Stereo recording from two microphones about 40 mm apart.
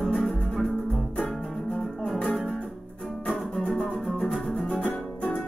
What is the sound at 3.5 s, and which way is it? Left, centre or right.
Music, centre.